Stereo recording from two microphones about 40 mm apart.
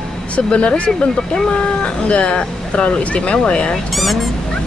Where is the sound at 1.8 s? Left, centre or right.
Left.